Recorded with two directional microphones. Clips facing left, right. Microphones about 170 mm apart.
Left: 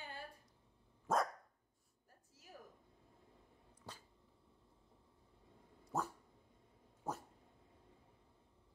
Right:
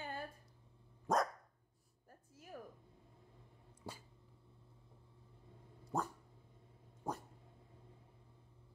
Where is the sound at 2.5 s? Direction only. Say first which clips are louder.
Right 7 dB; 75° right (ahead or behind).